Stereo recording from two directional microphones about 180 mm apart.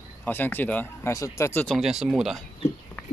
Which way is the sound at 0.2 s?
10° left (ahead or behind).